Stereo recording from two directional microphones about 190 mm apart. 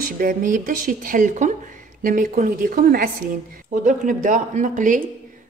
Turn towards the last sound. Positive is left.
turn(degrees=-40)  # may be behind; listen again after turning